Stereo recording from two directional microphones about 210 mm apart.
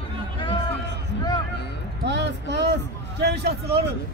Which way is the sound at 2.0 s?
55° right (ahead or behind).